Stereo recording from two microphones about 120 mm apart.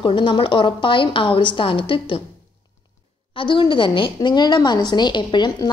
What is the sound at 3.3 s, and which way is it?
A woman's voice, 45° left (ahead or behind).